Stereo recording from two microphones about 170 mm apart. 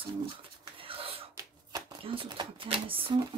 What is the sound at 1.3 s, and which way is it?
Shuffling cards, 25° right (ahead or behind).